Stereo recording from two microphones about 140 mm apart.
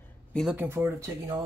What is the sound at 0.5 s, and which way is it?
Speech, 15° right (ahead or behind).